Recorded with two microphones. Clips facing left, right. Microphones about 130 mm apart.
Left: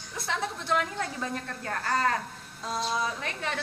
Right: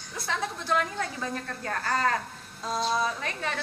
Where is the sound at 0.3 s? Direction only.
20° left (ahead or behind).